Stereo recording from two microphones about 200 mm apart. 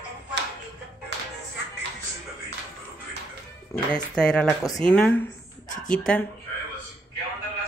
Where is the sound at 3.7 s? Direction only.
5° left (ahead or behind).